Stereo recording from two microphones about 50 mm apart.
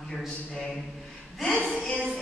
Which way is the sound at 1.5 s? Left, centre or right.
Centre.